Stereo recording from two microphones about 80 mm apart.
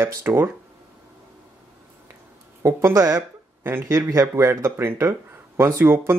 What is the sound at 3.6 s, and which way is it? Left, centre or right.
Speech, right.